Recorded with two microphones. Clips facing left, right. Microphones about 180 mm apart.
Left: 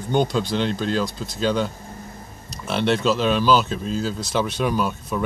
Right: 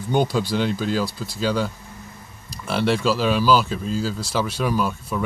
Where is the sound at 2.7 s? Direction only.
5° right (ahead or behind).